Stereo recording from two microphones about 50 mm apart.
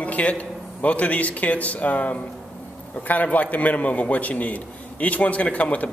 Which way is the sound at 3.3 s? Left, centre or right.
Left.